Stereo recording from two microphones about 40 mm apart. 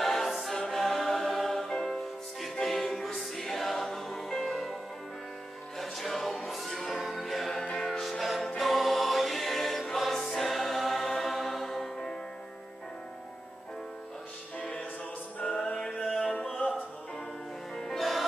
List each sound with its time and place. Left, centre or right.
0.0 s choir: centre
0.7 s music: centre
5.8 s music: centre
8.0 s music: centre
8.5 s choir: centre
15.4 s music: centre
16.5 s music: left
17.9 s music: centre